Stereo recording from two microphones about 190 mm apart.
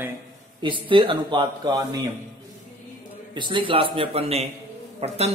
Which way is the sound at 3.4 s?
25° right (ahead or behind).